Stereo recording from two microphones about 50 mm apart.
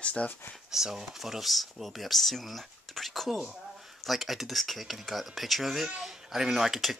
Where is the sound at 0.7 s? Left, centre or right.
Centre.